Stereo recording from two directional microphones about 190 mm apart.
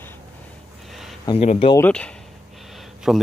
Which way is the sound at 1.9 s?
5° left (ahead or behind).